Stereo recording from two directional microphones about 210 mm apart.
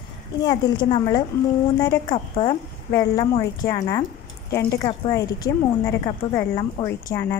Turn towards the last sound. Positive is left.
turn(degrees=10)  # may be behind; listen again after turning